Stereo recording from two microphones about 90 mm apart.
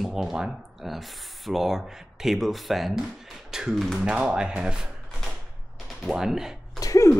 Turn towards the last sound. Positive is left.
turn(degrees=40)  # may be behind; listen again after turning